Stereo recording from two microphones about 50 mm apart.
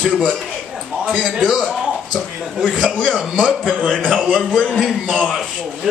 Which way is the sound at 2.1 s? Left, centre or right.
Centre.